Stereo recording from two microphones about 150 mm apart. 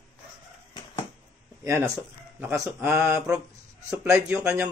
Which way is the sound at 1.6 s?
20° right (ahead or behind).